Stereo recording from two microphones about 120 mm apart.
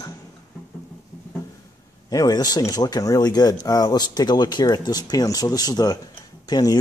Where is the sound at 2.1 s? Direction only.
35° left (ahead or behind).